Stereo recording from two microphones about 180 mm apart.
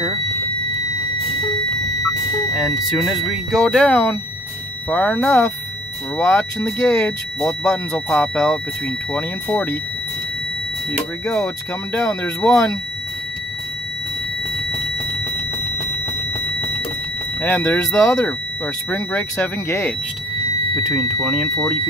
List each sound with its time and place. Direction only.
2.5 s speech: centre (ahead or behind)
11.2 s speech: 15° left (ahead or behind)
17.4 s speech: 10° left (ahead or behind)
20.9 s speech: 5° right (ahead or behind)